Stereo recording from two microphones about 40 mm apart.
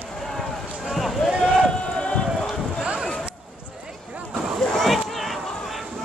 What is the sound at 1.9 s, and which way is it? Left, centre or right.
Run, left.